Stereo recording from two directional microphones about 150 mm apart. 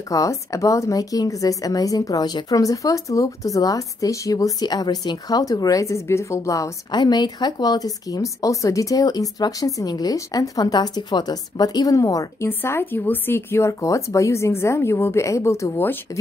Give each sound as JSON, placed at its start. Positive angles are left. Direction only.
{"t": 0.1, "sound": "a woman's voice", "side_deg": 20}